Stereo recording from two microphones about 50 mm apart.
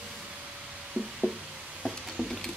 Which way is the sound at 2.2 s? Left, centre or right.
Centre.